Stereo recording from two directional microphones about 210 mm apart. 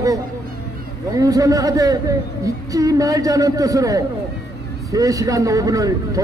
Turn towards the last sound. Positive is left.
turn(degrees=-15)  # may be behind; listen again after turning